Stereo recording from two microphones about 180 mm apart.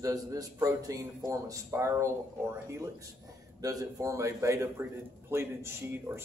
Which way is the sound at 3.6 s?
20° right (ahead or behind).